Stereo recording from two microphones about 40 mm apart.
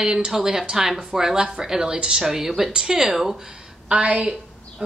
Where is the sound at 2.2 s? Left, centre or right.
Centre.